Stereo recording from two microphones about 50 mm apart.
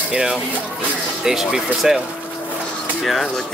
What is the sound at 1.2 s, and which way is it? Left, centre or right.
Speech, centre.